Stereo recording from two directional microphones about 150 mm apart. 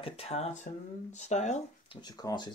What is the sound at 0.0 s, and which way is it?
Speech, 40° left (ahead or behind).